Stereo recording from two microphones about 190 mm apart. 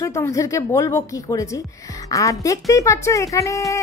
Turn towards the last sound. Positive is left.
turn(degrees=15)  # may be behind; listen again after turning